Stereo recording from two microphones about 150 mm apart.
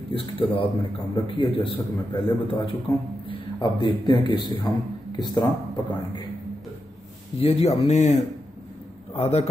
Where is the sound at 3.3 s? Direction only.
30° left (ahead or behind).